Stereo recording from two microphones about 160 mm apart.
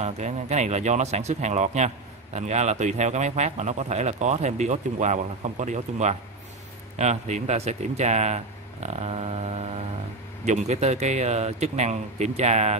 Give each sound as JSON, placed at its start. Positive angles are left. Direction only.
{"t": 0.0, "sound": "speech", "side_deg": -45}
{"t": 8.8, "sound": "a sound", "side_deg": -40}
{"t": 10.4, "sound": "speech", "side_deg": -45}